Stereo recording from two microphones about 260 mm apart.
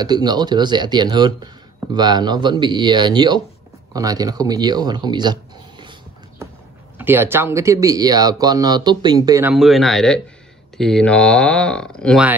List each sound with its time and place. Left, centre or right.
0.0 s speech: centre
7.0 s speech: centre